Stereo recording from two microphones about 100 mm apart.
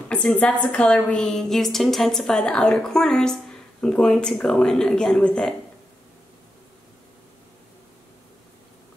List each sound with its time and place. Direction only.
0.1 s a woman's voice: 10° left (ahead or behind)